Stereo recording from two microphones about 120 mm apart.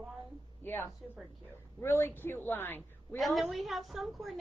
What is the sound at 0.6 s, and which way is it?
Speech, 20° left (ahead or behind).